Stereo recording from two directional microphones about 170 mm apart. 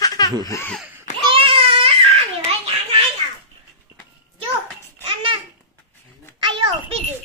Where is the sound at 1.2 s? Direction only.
30° right (ahead or behind).